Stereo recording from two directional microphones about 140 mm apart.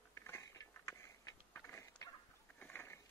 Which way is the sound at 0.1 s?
20° left (ahead or behind).